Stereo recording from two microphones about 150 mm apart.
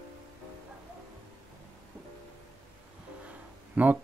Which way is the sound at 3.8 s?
10° right (ahead or behind).